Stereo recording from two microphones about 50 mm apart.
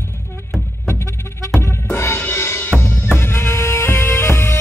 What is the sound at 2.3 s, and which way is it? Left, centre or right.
Music, left.